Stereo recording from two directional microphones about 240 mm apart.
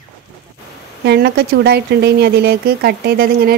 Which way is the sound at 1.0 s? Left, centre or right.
Right.